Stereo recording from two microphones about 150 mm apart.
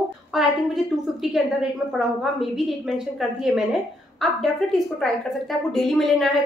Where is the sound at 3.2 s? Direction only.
Centre (ahead or behind).